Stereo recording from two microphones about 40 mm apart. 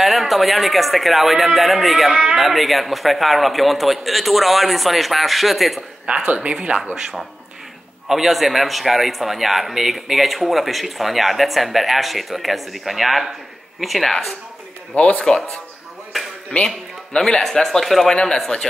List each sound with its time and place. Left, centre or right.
0.0 s a man's voice: centre
6.2 s speech: right
8.1 s a man's voice: centre
15.1 s speech: centre
16.5 s speech: left
17.2 s speech: centre
18.1 s speech: centre